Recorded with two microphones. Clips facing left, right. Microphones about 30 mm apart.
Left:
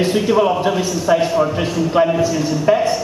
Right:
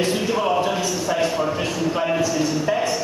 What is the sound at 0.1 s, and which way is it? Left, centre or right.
A man's voice, centre.